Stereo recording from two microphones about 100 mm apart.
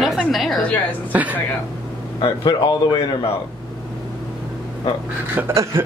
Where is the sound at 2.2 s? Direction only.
45° left (ahead or behind).